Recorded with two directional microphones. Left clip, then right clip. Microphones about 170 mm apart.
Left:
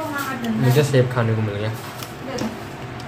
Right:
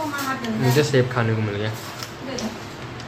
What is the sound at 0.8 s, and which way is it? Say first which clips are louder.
Speech: left 1 dB; 10° right (ahead or behind).